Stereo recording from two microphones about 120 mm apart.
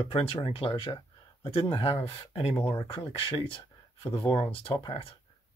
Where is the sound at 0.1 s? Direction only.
50° left (ahead or behind).